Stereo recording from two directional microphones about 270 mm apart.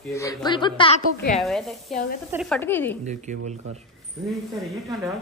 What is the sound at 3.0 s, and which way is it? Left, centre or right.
Speech, right.